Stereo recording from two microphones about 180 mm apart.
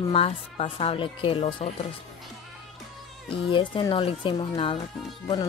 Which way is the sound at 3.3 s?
30° left (ahead or behind).